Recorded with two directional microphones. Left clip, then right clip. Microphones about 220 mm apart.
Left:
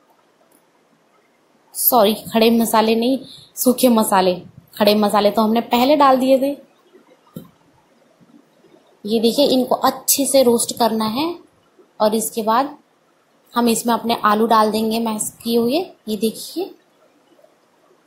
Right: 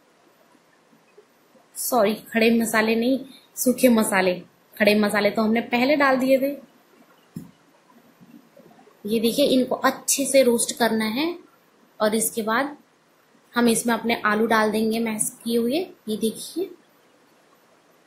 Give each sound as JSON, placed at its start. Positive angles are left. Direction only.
{"t": 1.9, "sound": "a woman's voice", "side_deg": 20}
{"t": 9.0, "sound": "a woman's voice", "side_deg": 15}